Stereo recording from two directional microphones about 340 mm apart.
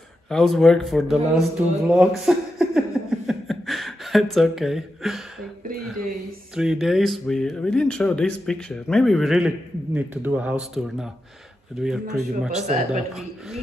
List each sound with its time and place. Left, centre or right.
0.3 s speech: centre
3.3 s a sound: centre
6.5 s speech: centre
12.5 s speech: right